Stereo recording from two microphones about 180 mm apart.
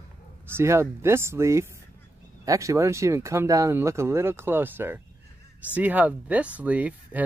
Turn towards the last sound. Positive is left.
turn(degrees=-10)  # may be behind; listen again after turning